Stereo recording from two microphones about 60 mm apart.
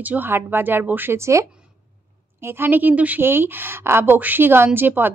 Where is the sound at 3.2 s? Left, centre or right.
Right.